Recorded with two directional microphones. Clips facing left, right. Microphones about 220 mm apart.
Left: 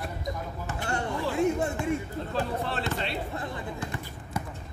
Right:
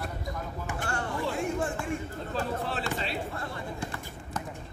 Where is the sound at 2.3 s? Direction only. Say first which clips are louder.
Left 1 dB; centre (ahead or behind).